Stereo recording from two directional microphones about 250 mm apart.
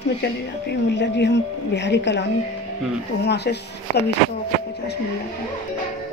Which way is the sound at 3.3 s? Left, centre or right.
Left.